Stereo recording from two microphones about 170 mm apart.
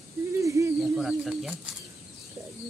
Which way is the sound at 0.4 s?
20° right (ahead or behind).